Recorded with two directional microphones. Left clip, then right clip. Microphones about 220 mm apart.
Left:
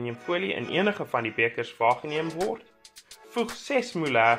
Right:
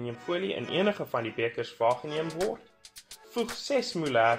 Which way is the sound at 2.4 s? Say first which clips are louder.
Left 1 dB; centre (ahead or behind).